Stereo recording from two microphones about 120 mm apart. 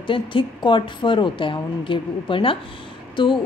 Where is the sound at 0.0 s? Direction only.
45° left (ahead or behind).